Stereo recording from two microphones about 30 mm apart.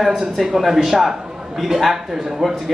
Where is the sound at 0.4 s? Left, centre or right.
Centre.